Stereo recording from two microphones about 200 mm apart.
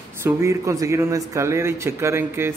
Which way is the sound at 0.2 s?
15° right (ahead or behind).